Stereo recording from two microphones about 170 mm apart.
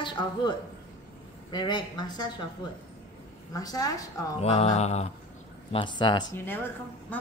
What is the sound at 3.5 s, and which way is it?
Speech, 20° left (ahead or behind).